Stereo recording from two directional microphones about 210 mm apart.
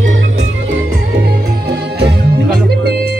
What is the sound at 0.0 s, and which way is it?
Music, 65° right (ahead or behind).